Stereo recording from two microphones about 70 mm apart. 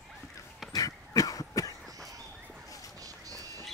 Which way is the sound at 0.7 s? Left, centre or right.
Left.